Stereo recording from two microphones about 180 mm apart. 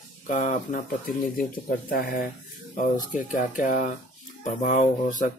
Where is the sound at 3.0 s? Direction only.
45° left (ahead or behind).